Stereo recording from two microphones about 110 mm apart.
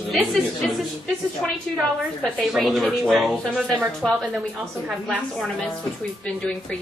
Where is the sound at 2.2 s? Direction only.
Centre (ahead or behind).